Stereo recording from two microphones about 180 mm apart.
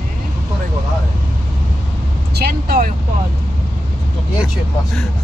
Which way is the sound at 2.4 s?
60° right (ahead or behind).